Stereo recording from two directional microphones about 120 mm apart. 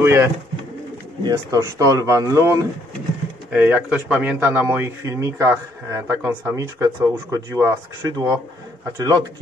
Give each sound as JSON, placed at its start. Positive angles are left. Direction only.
{"t": 0.0, "sound": "speech", "side_deg": -20}
{"t": 3.5, "sound": "a man's voice", "side_deg": -10}